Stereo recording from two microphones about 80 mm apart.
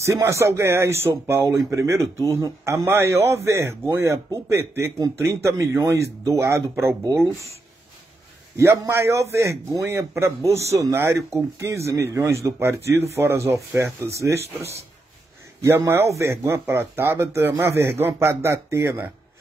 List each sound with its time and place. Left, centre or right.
0.0 s a man's voice: right
8.5 s a man's voice: right